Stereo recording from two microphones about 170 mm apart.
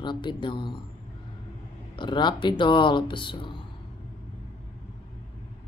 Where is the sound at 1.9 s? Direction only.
25° left (ahead or behind).